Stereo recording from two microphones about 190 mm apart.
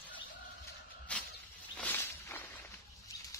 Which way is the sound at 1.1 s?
5° left (ahead or behind).